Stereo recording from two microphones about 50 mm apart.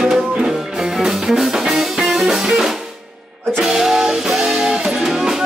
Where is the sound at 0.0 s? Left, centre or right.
Centre.